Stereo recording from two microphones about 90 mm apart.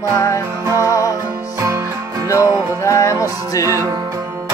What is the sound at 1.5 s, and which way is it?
Music, 35° right (ahead or behind).